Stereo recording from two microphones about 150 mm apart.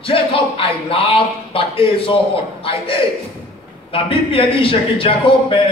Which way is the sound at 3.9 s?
40° left (ahead or behind).